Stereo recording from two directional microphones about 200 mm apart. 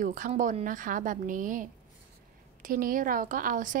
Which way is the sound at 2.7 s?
45° right (ahead or behind).